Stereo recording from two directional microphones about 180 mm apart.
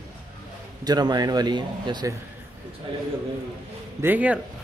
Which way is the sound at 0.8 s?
20° right (ahead or behind).